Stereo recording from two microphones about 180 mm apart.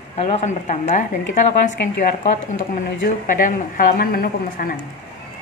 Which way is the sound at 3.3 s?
50° left (ahead or behind).